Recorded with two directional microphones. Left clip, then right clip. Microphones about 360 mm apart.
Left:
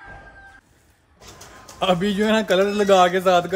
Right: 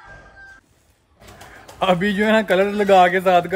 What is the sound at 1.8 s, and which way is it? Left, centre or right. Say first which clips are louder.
A man's voice: right 2 dB; centre.